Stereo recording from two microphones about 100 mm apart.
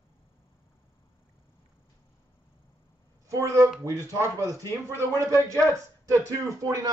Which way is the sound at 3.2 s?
30° right (ahead or behind).